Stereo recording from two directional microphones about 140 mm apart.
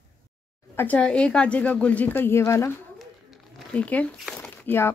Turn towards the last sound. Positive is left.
turn(degrees=15)  # may be behind; listen again after turning